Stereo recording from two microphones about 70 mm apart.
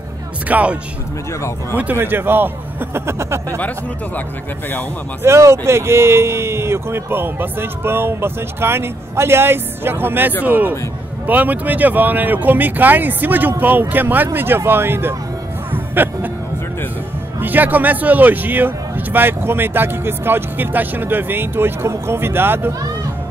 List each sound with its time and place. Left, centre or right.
0.5 s speech: centre
2.0 s speech: right
3.4 s speech: left
5.2 s speech: right
15.7 s music: right
17.4 s speech: right